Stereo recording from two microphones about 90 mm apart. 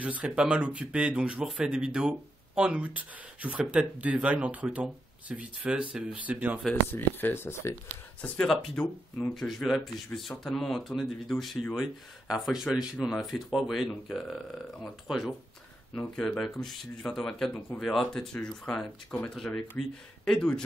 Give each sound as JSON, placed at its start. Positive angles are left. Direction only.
{"t": 0.0, "sound": "speech", "side_deg": -15}
{"t": 6.7, "sound": "speech", "side_deg": 20}
{"t": 8.2, "sound": "speech", "side_deg": 10}